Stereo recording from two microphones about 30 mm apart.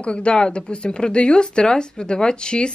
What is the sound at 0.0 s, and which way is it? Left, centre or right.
Speech, left.